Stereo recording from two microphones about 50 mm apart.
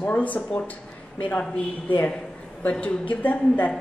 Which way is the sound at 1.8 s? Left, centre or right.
Left.